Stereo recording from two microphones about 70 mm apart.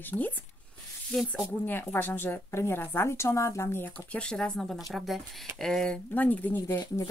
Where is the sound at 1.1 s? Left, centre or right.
Centre.